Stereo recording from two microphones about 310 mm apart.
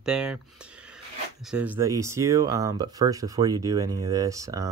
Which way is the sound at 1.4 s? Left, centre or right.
Centre.